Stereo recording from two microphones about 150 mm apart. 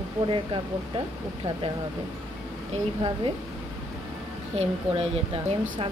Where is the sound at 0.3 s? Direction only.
35° right (ahead or behind).